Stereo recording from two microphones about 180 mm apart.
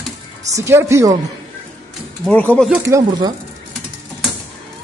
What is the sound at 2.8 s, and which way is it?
Speech, 15° right (ahead or behind).